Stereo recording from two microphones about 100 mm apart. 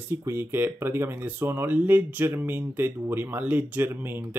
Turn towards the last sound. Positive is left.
turn(degrees=-20)  # may be behind; listen again after turning